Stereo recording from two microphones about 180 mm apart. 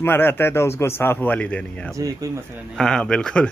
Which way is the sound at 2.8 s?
5° left (ahead or behind).